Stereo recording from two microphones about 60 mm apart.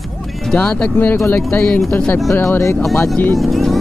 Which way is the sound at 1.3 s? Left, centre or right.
Left.